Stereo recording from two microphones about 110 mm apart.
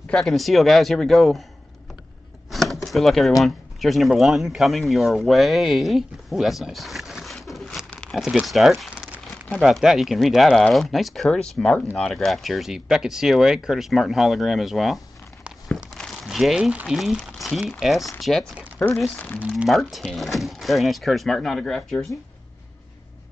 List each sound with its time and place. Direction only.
0.1 s speech: 5° left (ahead or behind)
2.5 s a sound: centre (ahead or behind)
3.4 s speech: centre (ahead or behind)
7.9 s a sound: 10° left (ahead or behind)
8.2 s speech: 5° right (ahead or behind)
8.9 s crumpling: 15° right (ahead or behind)
9.6 s speech: centre (ahead or behind); by 19.4 s 15° left (ahead or behind)
19.6 s speech: centre (ahead or behind)